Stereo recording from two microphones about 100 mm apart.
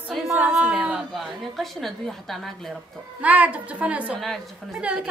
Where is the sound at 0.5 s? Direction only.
5° right (ahead or behind).